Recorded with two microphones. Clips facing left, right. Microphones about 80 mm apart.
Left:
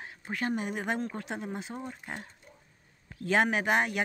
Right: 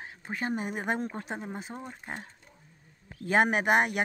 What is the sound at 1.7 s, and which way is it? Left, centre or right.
Speech, centre.